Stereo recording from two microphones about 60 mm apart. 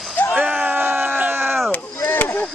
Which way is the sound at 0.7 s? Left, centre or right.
Right.